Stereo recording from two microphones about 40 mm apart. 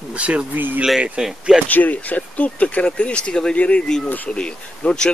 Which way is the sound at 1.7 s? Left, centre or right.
Left.